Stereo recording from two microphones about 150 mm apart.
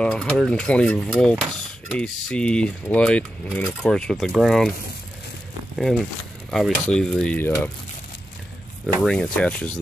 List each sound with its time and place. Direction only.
0.0 s speech: 5° left (ahead or behind)
6.5 s speech: 5° left (ahead or behind)
8.8 s speech: 5° left (ahead or behind)